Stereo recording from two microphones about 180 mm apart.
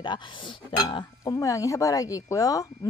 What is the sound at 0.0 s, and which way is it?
Speech, 25° left (ahead or behind).